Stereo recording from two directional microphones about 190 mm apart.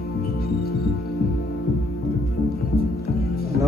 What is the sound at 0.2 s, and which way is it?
Music, 55° left (ahead or behind).